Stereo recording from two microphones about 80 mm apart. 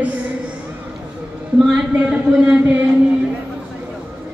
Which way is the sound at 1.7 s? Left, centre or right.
Centre.